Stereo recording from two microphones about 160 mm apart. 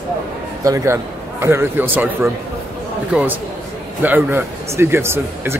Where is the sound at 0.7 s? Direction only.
20° right (ahead or behind).